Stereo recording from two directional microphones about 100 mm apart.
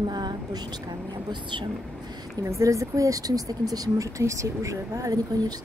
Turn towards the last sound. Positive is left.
turn(degrees=-35)  # may be behind; listen again after turning